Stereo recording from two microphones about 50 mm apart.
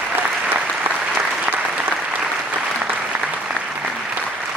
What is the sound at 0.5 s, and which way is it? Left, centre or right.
Applause, right.